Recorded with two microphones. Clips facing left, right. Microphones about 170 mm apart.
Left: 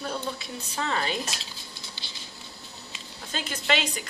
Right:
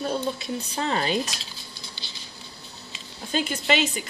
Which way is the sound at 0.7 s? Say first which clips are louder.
Right 3 dB; 25° right (ahead or behind).